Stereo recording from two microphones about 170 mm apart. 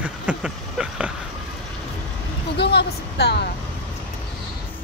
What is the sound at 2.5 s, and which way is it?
Speech, 75° left (ahead or behind).